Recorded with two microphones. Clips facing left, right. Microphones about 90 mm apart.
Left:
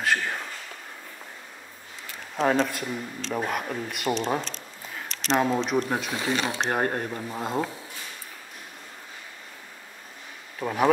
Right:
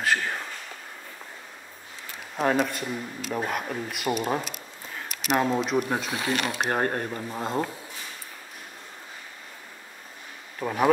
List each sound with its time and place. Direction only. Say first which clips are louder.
0.0 s a sound: even; centre (ahead or behind)
2.3 s speech: left 1 dB; 5° right (ahead or behind)
6.3 s speech: left 1 dB; 30° left (ahead or behind)
6.6 s speech: even; centre (ahead or behind)
10.6 s speech: even; centre (ahead or behind)